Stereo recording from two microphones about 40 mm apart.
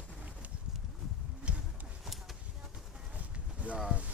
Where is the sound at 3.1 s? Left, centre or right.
Right.